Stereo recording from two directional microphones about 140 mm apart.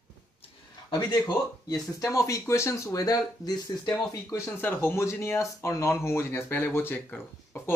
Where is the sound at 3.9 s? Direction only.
15° left (ahead or behind).